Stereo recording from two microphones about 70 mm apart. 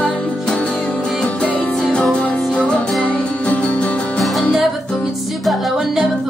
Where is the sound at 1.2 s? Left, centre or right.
Centre.